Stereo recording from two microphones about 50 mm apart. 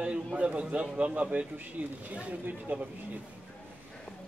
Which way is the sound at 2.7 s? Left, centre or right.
Right.